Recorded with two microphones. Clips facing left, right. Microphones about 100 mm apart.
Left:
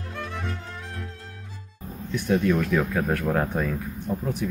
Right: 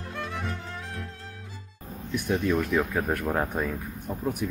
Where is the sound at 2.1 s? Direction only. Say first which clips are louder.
Left 3 dB; 15° right (ahead or behind).